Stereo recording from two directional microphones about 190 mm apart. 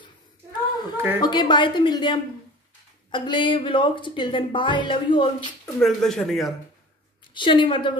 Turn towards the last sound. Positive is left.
turn(degrees=25)  # may be behind; listen again after turning